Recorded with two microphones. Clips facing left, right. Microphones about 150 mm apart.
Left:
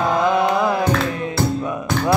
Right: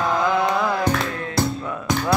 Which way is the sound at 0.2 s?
20° left (ahead or behind).